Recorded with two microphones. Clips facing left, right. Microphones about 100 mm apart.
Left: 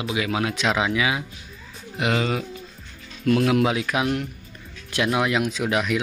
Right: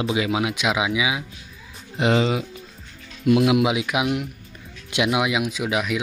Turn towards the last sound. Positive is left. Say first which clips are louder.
# left 1 dB
turn(degrees=-5)  # may be behind; listen again after turning